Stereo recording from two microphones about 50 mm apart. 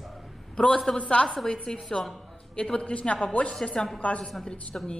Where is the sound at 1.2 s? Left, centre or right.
Centre.